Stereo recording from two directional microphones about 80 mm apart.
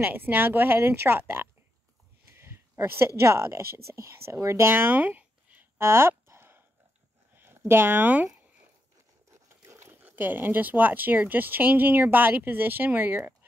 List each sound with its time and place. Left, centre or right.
0.0 s speech: right
2.3 s a sound: right
3.2 s a woman's voice: right
9.7 s speech: right